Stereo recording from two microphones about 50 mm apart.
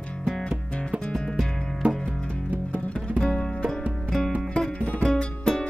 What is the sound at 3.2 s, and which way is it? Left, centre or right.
Music, centre.